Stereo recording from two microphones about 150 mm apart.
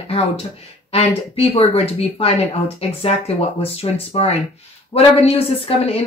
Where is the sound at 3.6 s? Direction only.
40° left (ahead or behind).